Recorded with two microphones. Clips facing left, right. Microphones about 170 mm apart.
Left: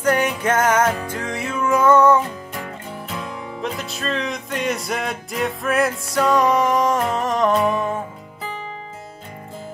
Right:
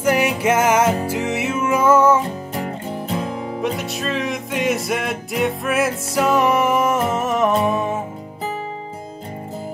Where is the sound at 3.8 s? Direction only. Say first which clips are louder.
Right 2 dB; centre (ahead or behind).